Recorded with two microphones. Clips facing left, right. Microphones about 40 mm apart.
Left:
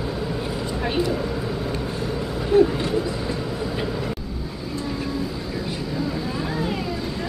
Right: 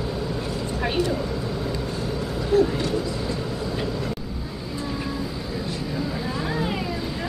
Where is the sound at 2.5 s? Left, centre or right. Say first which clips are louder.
Left 3 dB; left.